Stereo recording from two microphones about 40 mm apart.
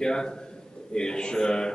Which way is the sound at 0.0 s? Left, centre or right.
Centre.